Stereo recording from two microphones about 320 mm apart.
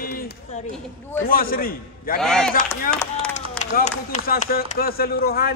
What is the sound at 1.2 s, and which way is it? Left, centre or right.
Speech, left.